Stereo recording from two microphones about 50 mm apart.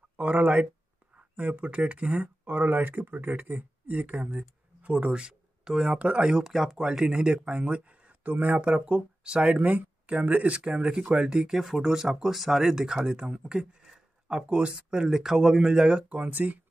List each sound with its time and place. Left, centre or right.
0.2 s speech: right
2.4 s speech: right; by 5.9 s centre
5.9 s speech: right; by 6.8 s centre
6.8 s speech: centre; by 8.6 s right
8.6 s speech: right
11.5 s speech: centre
16.2 s speech: right